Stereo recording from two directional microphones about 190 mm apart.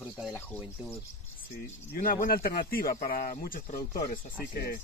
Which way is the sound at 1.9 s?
50° left (ahead or behind).